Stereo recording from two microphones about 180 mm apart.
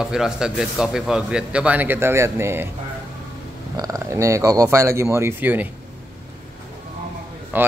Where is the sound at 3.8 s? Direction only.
15° right (ahead or behind).